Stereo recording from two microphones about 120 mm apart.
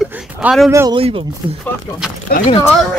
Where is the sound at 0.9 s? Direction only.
50° right (ahead or behind).